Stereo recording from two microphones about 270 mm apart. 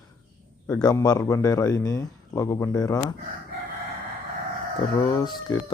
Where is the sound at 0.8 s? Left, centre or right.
Centre.